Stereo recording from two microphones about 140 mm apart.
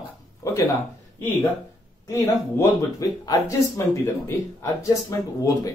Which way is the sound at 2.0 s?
25° left (ahead or behind).